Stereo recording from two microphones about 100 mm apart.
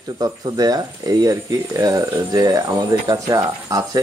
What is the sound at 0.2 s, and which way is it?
Speech, 40° right (ahead or behind).